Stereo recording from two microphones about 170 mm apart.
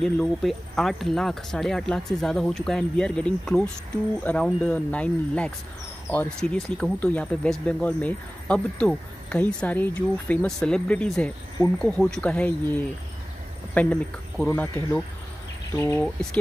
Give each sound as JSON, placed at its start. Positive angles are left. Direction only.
{"t": 0.0, "sound": "speech", "side_deg": 0}